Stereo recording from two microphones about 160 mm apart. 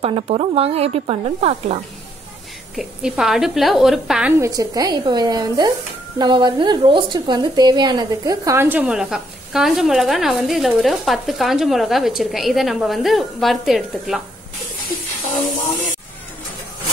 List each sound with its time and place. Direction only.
0.0 s speech: 35° right (ahead or behind)
2.7 s a woman's voice: centre (ahead or behind)
4.4 s a woman's voice: 20° right (ahead or behind); by 14.2 s centre (ahead or behind)